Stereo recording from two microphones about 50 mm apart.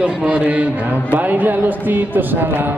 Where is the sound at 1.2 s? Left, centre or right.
Right.